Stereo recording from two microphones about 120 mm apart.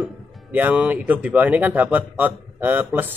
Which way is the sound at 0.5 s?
10° right (ahead or behind).